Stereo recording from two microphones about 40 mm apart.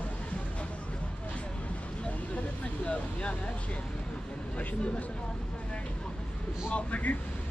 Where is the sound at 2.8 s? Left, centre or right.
Left.